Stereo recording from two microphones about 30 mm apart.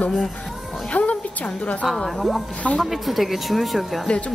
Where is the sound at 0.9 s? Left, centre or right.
Left.